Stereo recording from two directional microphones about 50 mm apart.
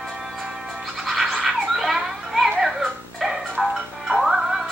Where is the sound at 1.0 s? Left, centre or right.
Centre.